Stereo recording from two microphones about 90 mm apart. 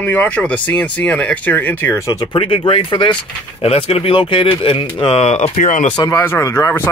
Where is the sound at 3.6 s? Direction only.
90° left.